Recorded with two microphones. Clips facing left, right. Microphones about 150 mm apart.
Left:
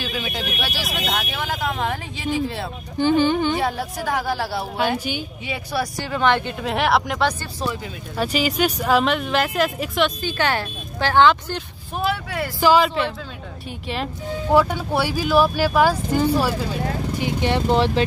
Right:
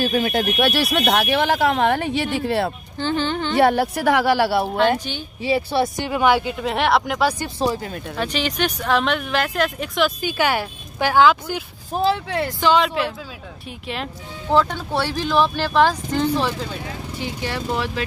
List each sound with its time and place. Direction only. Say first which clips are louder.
0.0 s speech: right 8 dB; 45° right (ahead or behind); by 2.7 s 65° right (ahead or behind)
3.0 s speech: left 5 dB; 10° left (ahead or behind)
3.5 s speech: right 7 dB; 70° right (ahead or behind)
4.7 s speech: right 3 dB; 10° left (ahead or behind)
5.4 s speech: right 9 dB; 30° right (ahead or behind); by 7.3 s 5° right (ahead or behind)
7.6 s speech: right 5 dB; 35° right (ahead or behind)
8.2 s speech: left 3 dB; 5° left (ahead or behind)
10.2 s speech: right 2 dB; 10° right (ahead or behind)
11.9 s speech: right 4 dB; 30° right (ahead or behind)
12.5 s speech: left 2 dB; 5° left (ahead or behind)
14.5 s speech: left 1 dB; 10° left (ahead or behind)
17.2 s speech: left 5 dB; 20° left (ahead or behind)